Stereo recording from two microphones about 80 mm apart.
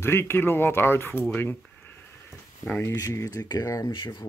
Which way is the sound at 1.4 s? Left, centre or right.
Left.